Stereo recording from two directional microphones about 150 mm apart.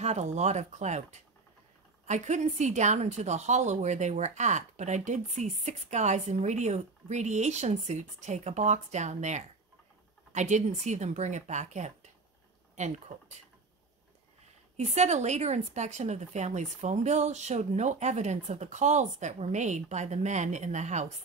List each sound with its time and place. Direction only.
0.0 s a woman's voice: 45° right (ahead or behind)
2.0 s a woman's voice: 50° right (ahead or behind)
14.8 s a woman's voice: 50° right (ahead or behind)